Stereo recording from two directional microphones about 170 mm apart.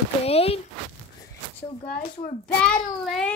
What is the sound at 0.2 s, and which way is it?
Speech, 35° left (ahead or behind).